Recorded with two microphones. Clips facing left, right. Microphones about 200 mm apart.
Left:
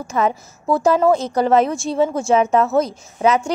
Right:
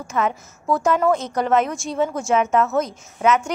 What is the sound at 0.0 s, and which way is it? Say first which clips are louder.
A woman's voice: left 3 dB; 30° left (ahead or behind).